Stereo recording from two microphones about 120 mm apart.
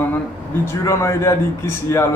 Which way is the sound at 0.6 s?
25° left (ahead or behind).